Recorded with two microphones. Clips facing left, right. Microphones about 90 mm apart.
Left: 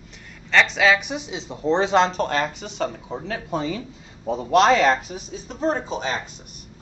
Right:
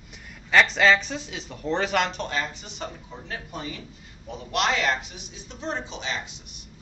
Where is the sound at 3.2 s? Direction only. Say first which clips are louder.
Left 9 dB; 90° left.